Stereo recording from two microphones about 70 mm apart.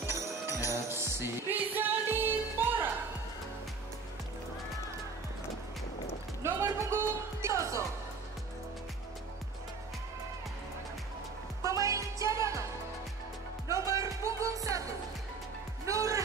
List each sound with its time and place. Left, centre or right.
0.0 s music: right
6.4 s speech: right
11.6 s music: right
13.7 s music: right
15.8 s music: right